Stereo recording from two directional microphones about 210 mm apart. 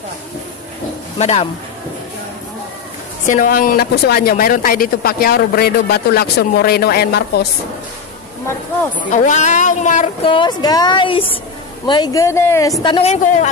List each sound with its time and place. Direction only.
1.1 s speech: 30° left (ahead or behind)
3.3 s speech: 40° left (ahead or behind)
9.1 s speech: 35° left (ahead or behind)
10.3 s a woman's voice: 20° left (ahead or behind)
12.8 s speech: 25° left (ahead or behind)